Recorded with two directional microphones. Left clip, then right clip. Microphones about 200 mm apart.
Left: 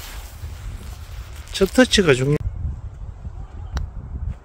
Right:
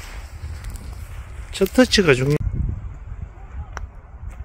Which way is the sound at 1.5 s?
Centre (ahead or behind).